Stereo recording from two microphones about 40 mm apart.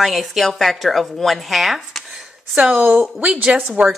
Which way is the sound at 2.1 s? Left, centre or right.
Right.